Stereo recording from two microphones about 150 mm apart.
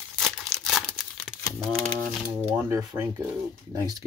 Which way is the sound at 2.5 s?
15° right (ahead or behind).